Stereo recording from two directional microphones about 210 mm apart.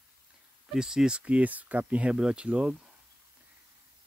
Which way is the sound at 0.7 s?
5° right (ahead or behind).